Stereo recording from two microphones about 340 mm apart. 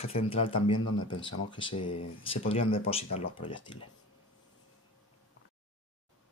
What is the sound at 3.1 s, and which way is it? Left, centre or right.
Speech, left.